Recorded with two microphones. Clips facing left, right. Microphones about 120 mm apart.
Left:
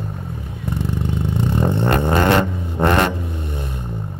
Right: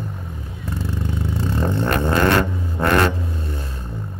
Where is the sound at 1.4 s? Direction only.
20° left (ahead or behind).